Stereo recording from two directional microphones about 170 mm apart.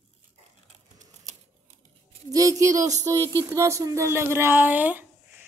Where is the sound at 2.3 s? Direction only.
20° right (ahead or behind).